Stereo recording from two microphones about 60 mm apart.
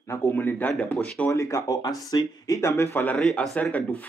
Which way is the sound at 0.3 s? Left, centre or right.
Left.